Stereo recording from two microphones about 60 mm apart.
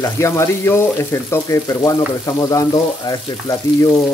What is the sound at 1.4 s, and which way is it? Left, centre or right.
Speech, left.